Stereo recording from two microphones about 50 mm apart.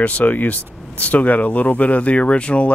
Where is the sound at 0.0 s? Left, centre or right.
Left.